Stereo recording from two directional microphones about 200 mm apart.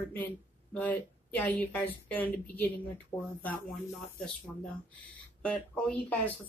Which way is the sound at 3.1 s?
20° left (ahead or behind).